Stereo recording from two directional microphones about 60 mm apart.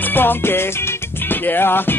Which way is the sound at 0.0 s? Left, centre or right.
Left.